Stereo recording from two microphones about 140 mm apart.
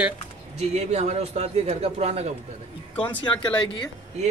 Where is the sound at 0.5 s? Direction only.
50° right (ahead or behind).